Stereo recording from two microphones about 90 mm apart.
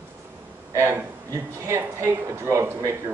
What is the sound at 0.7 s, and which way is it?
A man's voice, 25° right (ahead or behind).